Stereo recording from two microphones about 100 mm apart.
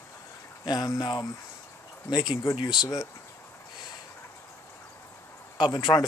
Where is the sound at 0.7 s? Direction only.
40° left (ahead or behind).